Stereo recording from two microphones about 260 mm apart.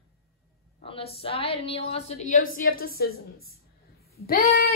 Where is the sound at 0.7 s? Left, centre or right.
Left.